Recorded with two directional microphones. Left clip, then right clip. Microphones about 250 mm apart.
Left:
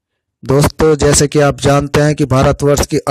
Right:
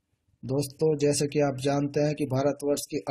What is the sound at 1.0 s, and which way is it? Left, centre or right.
Speech, left.